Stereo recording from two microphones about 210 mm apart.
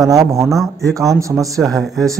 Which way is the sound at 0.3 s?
15° right (ahead or behind).